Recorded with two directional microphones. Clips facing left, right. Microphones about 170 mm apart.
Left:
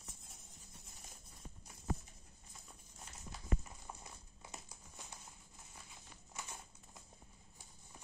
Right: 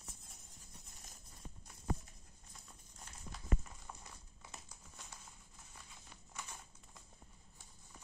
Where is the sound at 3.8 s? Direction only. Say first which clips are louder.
Left 1 dB; 20° left (ahead or behind).